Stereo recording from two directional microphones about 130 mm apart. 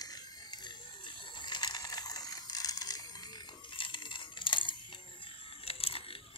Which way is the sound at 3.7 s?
40° left (ahead or behind).